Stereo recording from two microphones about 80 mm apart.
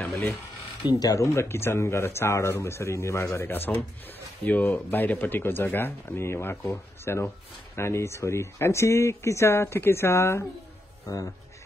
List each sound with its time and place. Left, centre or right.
0.8 s speech: left
1.2 s speech: left